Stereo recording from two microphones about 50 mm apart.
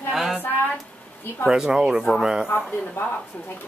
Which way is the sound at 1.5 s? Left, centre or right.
Centre.